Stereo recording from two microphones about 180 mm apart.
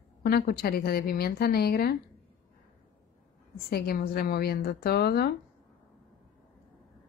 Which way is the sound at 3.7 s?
60° left (ahead or behind).